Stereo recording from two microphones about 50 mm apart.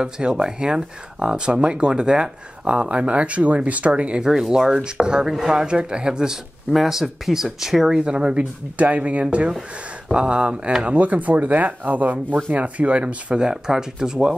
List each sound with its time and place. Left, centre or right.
0.0 s speech: centre
8.0 s speech: centre
13.4 s speech: centre